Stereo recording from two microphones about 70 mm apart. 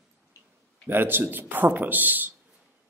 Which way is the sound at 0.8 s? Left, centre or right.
Right.